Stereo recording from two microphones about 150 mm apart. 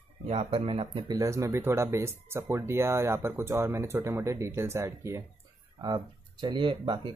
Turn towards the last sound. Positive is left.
turn(degrees=-30)  # may be behind; listen again after turning